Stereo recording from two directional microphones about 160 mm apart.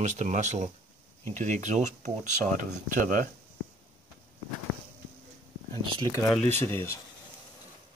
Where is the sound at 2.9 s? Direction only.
55° right (ahead or behind).